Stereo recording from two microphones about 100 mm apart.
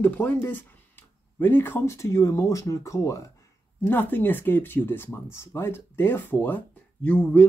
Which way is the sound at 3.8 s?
20° left (ahead or behind).